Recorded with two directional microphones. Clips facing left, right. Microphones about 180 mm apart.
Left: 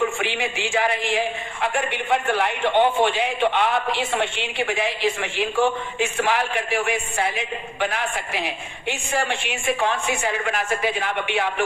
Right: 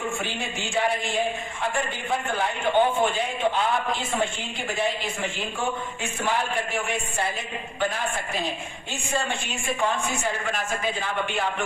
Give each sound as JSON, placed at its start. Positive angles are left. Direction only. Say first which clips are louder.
{"t": 0.2, "sound": "speech", "louder": "left 5 dB", "side_deg": 85}
{"t": 1.9, "sound": "a man's voice", "louder": "left 5 dB", "side_deg": 70}